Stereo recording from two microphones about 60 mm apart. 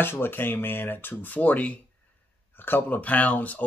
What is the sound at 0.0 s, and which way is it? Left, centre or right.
Speech, left.